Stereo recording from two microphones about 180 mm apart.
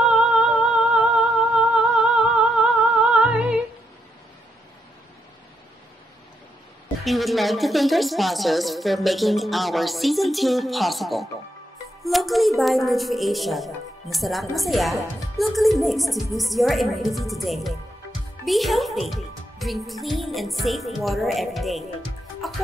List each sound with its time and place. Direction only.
0.1 s music: 5° right (ahead or behind)
7.1 s a woman's voice: centre (ahead or behind)